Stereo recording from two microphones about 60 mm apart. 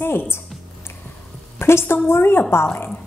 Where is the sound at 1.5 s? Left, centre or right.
Left.